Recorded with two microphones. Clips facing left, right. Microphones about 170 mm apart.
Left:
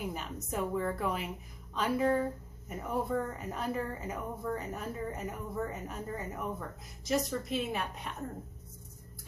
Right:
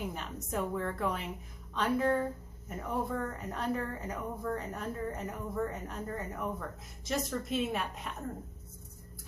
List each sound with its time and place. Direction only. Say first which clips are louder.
0.0 s a woman's voice: left 1 dB; 5° left (ahead or behind)